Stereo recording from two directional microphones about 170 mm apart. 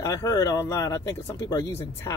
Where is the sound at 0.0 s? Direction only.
20° left (ahead or behind).